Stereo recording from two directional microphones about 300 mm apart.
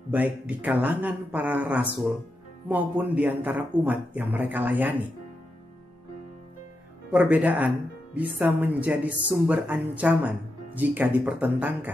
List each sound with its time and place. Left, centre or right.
0.1 s speech: centre
7.1 s speech: centre